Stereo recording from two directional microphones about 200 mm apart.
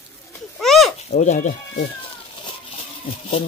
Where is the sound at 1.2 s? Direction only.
40° left (ahead or behind).